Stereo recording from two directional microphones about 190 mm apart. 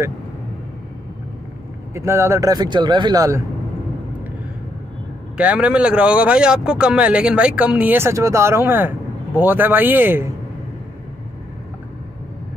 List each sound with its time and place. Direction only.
2.0 s speech: 15° right (ahead or behind)
5.4 s speech: 5° right (ahead or behind)